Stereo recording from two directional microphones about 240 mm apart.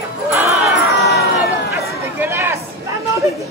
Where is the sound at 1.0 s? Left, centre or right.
Left.